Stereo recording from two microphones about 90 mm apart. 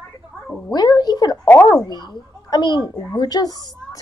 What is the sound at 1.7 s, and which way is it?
A child's voice, 45° left (ahead or behind).